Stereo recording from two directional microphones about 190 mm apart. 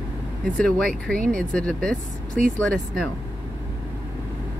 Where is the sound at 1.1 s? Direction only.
45° right (ahead or behind).